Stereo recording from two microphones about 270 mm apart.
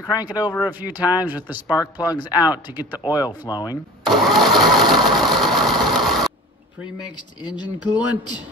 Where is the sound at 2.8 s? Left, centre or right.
Centre.